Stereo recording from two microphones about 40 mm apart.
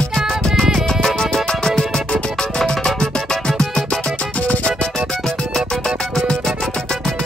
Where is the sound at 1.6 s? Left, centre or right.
Centre.